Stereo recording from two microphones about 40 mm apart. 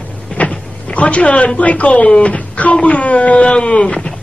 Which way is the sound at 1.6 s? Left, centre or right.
Left.